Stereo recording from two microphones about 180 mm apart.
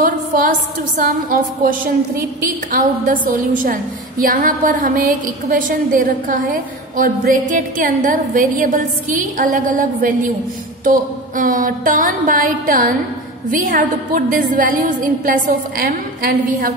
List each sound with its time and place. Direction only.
0.0 s a woman's voice: 50° right (ahead or behind)